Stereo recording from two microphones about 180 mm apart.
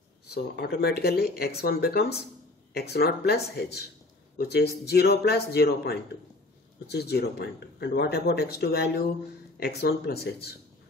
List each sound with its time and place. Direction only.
0.3 s speech: 60° left (ahead or behind)